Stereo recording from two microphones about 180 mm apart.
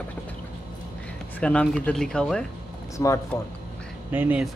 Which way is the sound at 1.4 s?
5° left (ahead or behind).